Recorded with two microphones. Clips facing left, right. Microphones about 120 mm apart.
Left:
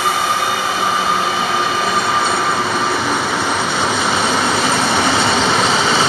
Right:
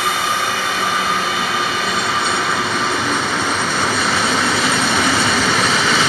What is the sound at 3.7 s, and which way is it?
Train, 20° left (ahead or behind).